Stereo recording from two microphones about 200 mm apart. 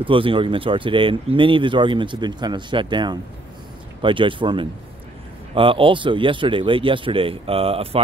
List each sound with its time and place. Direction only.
0.0 s speech: 25° right (ahead or behind)